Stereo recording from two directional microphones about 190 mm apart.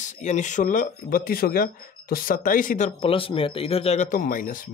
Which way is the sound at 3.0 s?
30° left (ahead or behind).